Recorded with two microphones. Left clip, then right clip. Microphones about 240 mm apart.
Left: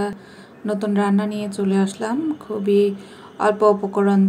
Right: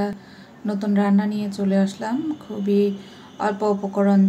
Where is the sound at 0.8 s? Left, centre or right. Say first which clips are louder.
Even; centre.